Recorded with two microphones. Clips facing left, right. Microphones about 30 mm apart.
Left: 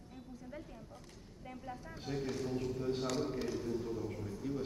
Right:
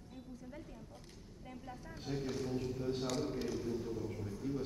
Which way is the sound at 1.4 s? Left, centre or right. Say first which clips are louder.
Left 3 dB; centre.